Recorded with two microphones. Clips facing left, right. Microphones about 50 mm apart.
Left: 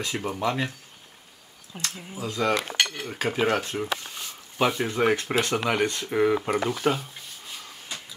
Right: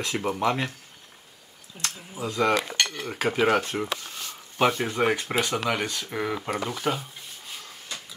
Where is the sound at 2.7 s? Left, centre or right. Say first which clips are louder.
Left 1 dB; centre.